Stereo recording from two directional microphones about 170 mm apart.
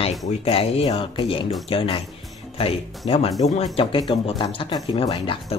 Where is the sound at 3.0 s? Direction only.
35° left (ahead or behind).